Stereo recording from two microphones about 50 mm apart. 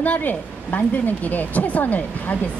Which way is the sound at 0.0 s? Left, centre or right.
Left.